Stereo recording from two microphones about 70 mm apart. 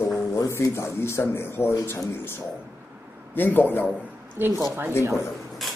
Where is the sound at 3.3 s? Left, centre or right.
Left.